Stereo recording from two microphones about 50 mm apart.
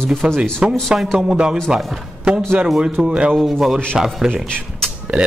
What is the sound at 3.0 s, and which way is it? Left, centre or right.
A man's voice, right.